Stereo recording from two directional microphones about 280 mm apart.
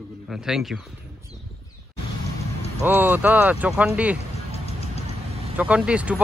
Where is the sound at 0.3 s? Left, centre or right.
Centre.